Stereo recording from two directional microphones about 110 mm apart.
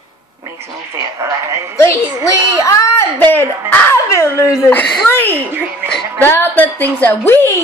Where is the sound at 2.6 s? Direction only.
20° left (ahead or behind).